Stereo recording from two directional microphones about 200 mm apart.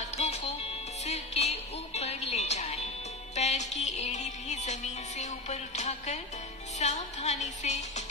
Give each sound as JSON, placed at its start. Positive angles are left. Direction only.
{"t": 0.2, "sound": "music", "side_deg": 35}